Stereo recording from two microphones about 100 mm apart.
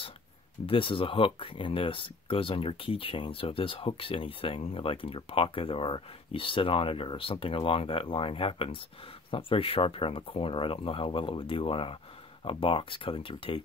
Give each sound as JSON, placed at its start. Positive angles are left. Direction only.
{"t": 0.7, "sound": "speech", "side_deg": 60}